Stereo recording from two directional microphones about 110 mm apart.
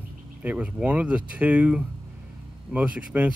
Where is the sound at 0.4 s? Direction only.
15° right (ahead or behind).